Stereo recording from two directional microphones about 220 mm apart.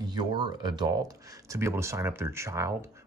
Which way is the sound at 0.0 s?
20° right (ahead or behind).